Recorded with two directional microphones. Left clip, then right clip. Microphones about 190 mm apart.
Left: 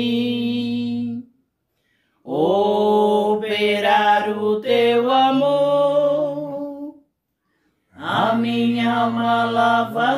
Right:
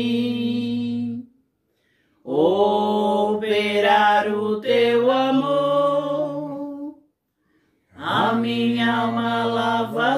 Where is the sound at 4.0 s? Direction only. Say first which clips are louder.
Even; 15° left (ahead or behind).